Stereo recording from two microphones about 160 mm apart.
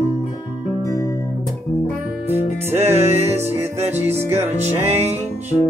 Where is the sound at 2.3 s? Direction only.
15° right (ahead or behind).